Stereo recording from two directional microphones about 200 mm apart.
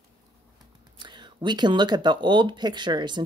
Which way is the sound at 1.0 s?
25° right (ahead or behind).